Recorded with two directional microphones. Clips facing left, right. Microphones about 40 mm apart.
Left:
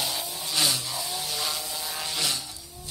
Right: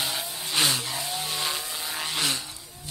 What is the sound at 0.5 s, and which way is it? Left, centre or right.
Vehicle, right.